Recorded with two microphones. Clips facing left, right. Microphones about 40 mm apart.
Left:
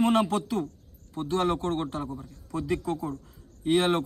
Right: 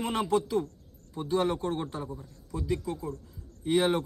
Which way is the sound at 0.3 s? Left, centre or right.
Centre.